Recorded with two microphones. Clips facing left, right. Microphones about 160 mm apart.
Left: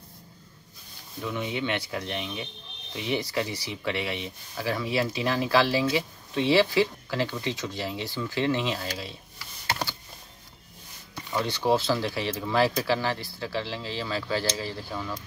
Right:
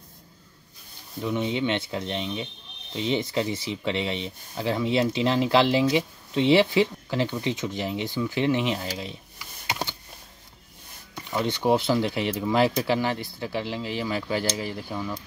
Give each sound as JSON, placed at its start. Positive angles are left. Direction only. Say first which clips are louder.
{"t": 1.2, "sound": "speech", "louder": "right 4 dB", "side_deg": -20}
{"t": 11.2, "sound": "speech", "louder": "right 2 dB", "side_deg": -20}